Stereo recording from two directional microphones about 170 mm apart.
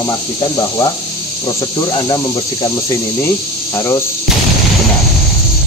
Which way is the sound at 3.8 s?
20° left (ahead or behind).